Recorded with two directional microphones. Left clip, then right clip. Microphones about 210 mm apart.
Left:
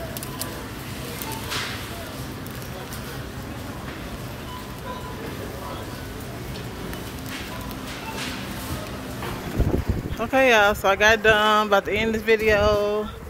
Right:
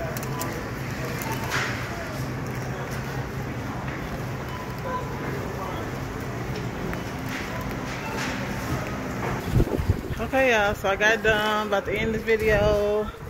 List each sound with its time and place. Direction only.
10.3 s speech: 40° left (ahead or behind)